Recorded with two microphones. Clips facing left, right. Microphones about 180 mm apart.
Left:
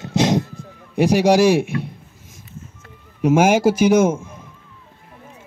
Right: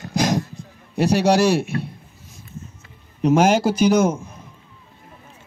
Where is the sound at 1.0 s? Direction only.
15° left (ahead or behind).